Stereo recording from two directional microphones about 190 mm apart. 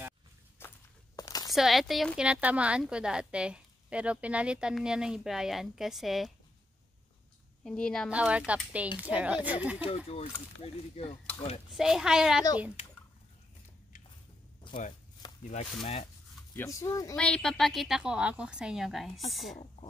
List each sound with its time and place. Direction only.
0.6 s walk: 15° left (ahead or behind)
1.5 s speech: centre (ahead or behind)
7.6 s speech: 5° left (ahead or behind)
8.1 s speech: 5° right (ahead or behind)
9.8 s speech: 30° left (ahead or behind)
11.7 s speech: 5° right (ahead or behind)
14.7 s speech: 40° left (ahead or behind)
15.8 s rub: 25° left (ahead or behind)
16.5 s speech: 15° left (ahead or behind)
17.1 s speech: 5° left (ahead or behind)